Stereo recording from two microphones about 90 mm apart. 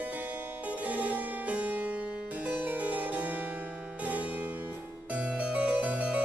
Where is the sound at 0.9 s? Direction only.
15° right (ahead or behind).